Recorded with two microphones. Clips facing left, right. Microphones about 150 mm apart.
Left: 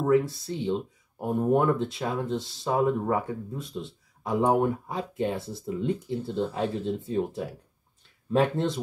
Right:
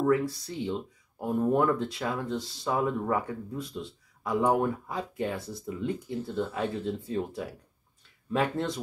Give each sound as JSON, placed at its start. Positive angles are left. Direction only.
{"t": 0.0, "sound": "speech", "side_deg": 25}